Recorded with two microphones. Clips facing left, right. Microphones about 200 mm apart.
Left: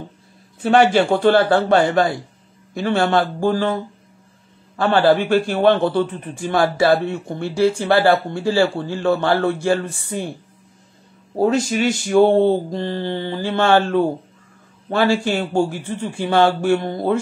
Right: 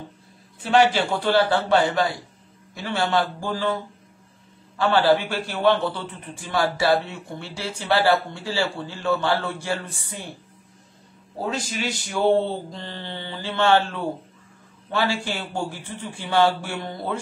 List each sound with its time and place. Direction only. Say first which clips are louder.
0.7 s mantra: left 5 dB; 50° left (ahead or behind)
4.7 s mantra: left 4 dB; 50° left (ahead or behind)
11.3 s mantra: left 11 dB; 55° left (ahead or behind)